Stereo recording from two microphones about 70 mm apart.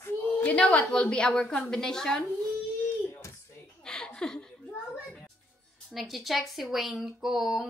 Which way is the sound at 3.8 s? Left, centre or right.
Centre.